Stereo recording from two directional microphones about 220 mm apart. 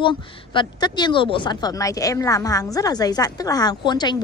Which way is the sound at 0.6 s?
20° left (ahead or behind).